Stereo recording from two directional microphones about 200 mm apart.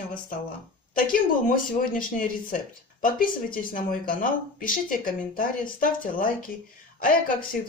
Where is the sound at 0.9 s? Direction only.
45° left (ahead or behind).